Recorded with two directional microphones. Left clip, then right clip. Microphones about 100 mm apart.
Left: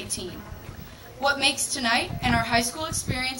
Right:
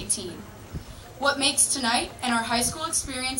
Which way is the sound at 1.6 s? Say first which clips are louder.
Left 1 dB; 30° left (ahead or behind).